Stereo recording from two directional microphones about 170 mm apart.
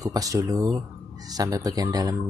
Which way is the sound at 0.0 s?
20° right (ahead or behind).